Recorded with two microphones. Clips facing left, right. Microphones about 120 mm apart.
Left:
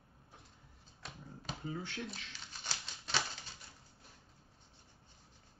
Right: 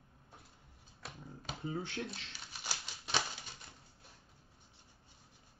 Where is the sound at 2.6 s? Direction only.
10° right (ahead or behind).